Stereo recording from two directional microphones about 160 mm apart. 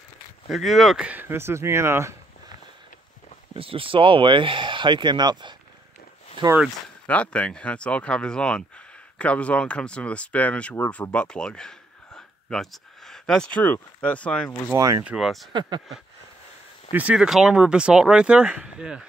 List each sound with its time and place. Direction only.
0.5 s speech: centre (ahead or behind); by 2.1 s 15° right (ahead or behind)
3.5 s speech: 35° right (ahead or behind)
7.1 s speech: 10° left (ahead or behind)
14.8 s speech: 20° right (ahead or behind)
15.0 s speech: centre (ahead or behind)
16.9 s speech: 5° right (ahead or behind)